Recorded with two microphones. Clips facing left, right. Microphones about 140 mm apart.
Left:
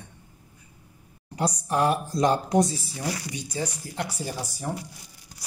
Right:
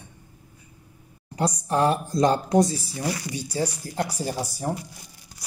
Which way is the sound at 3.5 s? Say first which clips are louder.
Right 4 dB; 35° right (ahead or behind).